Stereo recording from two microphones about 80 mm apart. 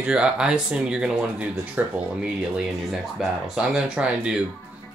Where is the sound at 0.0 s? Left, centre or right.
Centre.